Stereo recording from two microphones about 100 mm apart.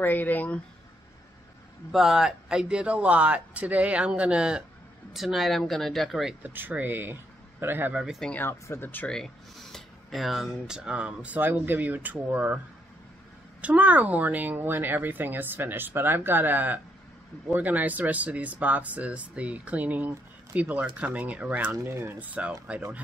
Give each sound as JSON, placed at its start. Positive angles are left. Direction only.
{"t": 0.0, "sound": "speech", "side_deg": 20}
{"t": 1.9, "sound": "speech", "side_deg": -5}
{"t": 6.4, "sound": "speech", "side_deg": -20}
{"t": 8.0, "sound": "speech", "side_deg": -5}
{"t": 8.3, "sound": "speech", "side_deg": 20}
{"t": 9.1, "sound": "speech", "side_deg": 5}
{"t": 13.6, "sound": "speech", "side_deg": -15}
{"t": 21.7, "sound": "speech", "side_deg": -25}